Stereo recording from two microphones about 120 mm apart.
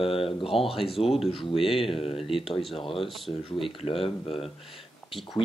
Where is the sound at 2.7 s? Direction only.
45° left (ahead or behind).